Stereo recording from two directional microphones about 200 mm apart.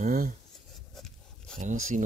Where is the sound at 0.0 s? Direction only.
45° right (ahead or behind).